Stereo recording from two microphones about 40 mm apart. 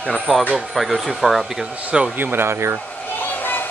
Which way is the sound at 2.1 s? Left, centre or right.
Right.